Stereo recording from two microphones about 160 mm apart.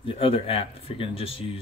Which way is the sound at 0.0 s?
35° left (ahead or behind).